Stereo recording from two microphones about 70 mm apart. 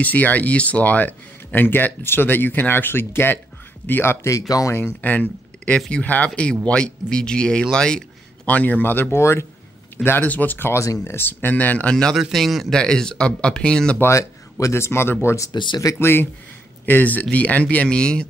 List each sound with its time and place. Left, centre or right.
0.0 s speech: left
4.7 s speech: left; by 8.0 s centre
8.5 s speech: left
9.2 s speech: left
10.0 s speech: left
10.7 s speech: left
11.1 s speech: left
11.9 s a man's voice: centre
13.9 s speech: left
15.2 s speech: left
16.0 s speech: left; by 18.2 s centre